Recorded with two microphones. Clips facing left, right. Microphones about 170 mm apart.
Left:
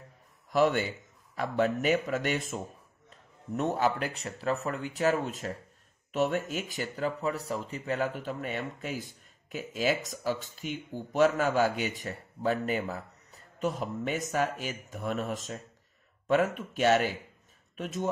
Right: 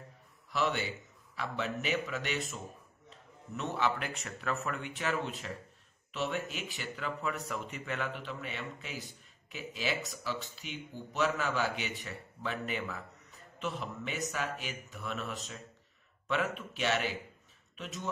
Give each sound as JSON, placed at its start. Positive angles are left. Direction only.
{"t": 0.5, "sound": "speech", "side_deg": 45}